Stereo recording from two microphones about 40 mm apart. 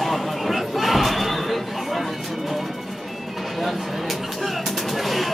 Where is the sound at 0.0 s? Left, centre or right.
Centre.